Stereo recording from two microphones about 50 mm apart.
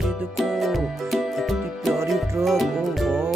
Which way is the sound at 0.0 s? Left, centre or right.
Centre.